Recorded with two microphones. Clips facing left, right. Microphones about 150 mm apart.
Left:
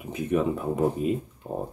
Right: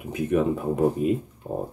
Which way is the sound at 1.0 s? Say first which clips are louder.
Right 3 dB; 55° right (ahead or behind).